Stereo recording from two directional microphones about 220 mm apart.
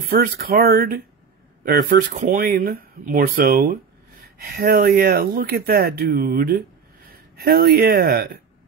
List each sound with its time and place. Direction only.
0.1 s speech: 45° right (ahead or behind)
2.2 s speech: 45° right (ahead or behind)